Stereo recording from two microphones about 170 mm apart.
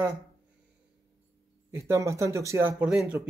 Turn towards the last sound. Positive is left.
turn(degrees=-10)  # may be behind; listen again after turning